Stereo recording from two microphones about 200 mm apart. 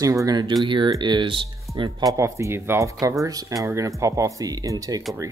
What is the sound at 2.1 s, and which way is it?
Speech, 15° right (ahead or behind).